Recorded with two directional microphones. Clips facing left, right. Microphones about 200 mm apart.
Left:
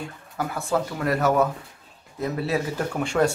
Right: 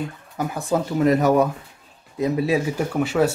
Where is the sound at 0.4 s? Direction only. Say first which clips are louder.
Right 2 dB; 15° right (ahead or behind).